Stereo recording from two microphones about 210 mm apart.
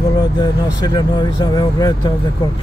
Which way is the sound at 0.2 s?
20° left (ahead or behind).